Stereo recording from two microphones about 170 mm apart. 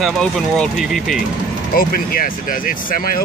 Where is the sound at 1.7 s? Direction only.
60° left (ahead or behind).